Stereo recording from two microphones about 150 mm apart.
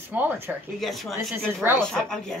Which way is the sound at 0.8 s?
Centre (ahead or behind).